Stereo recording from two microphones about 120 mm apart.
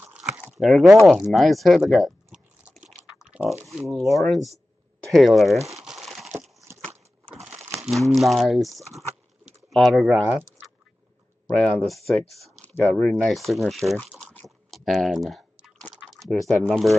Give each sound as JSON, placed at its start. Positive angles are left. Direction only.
{"t": 0.0, "sound": "a sound", "side_deg": -5}
{"t": 0.6, "sound": "speech", "side_deg": 0}
{"t": 3.0, "sound": "a sound", "side_deg": -10}
{"t": 3.6, "sound": "speech", "side_deg": 0}
{"t": 5.8, "sound": "crumpling", "side_deg": 0}
{"t": 6.7, "sound": "a sound", "side_deg": -20}
{"t": 8.1, "sound": "speech", "side_deg": 0}
{"t": 11.5, "sound": "speech", "side_deg": 10}
{"t": 12.6, "sound": "speech", "side_deg": 10}
{"t": 15.9, "sound": "typing", "side_deg": -5}
{"t": 16.5, "sound": "speech", "side_deg": 10}